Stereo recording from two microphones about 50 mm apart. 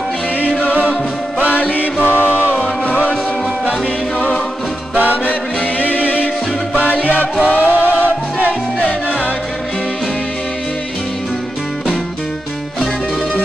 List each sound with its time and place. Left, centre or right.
1.6 s music: left
2.0 s music: right
2.6 s music: left
4.9 s music: right
5.9 s music: left
7.4 s music: right